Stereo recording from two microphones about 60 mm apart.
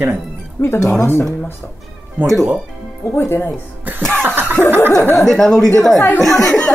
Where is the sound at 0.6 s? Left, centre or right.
Left.